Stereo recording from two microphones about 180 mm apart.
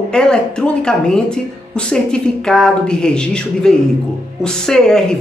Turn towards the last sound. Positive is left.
turn(degrees=5)  # may be behind; listen again after turning